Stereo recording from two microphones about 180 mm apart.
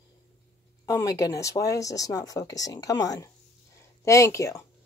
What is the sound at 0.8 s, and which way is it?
Speech, 20° left (ahead or behind).